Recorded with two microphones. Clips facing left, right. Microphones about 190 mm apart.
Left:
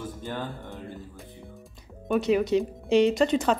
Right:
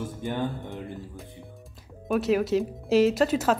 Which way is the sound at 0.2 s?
15° right (ahead or behind).